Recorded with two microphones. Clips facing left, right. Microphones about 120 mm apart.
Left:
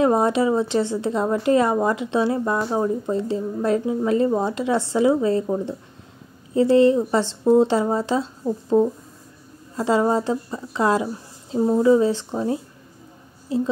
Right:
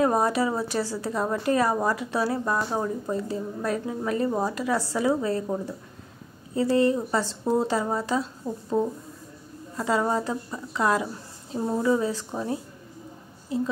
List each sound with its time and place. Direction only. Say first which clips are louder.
0.0 s speech: left 4 dB; 25° left (ahead or behind)
6.5 s speech: left 6 dB; 25° left (ahead or behind)
9.8 s speech: left 5 dB; 25° left (ahead or behind)